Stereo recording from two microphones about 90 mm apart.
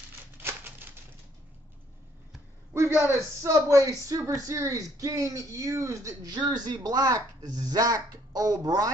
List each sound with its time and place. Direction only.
0.4 s a sound: 20° right (ahead or behind)
2.7 s a man's voice: 30° right (ahead or behind)
6.3 s speech: 50° right (ahead or behind)